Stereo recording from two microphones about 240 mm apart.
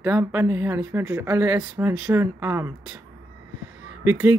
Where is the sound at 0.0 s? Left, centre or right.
Centre.